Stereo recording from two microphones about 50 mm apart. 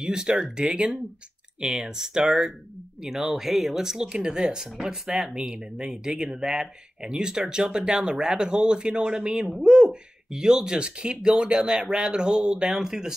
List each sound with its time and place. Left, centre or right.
0.0 s speech: centre